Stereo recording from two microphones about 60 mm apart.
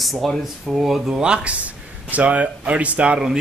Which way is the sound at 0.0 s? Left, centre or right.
Centre.